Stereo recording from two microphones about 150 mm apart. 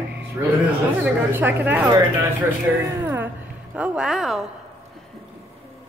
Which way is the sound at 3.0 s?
15° right (ahead or behind).